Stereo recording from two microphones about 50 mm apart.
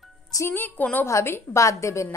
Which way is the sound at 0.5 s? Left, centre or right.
Left.